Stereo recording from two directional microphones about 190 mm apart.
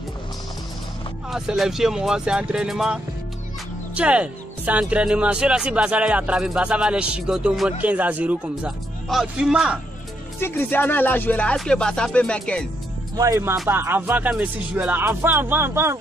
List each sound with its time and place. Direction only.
1.3 s speech: centre (ahead or behind)
10.4 s speech: 10° left (ahead or behind)
13.1 s speech: 15° right (ahead or behind)